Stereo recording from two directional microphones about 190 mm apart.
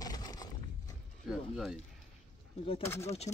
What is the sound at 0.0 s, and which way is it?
Horse, 20° left (ahead or behind).